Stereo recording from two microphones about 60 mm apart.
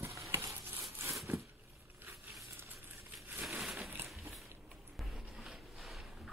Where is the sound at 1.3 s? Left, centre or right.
Right.